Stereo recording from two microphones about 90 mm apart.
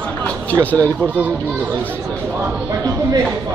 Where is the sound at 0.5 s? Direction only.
20° left (ahead or behind).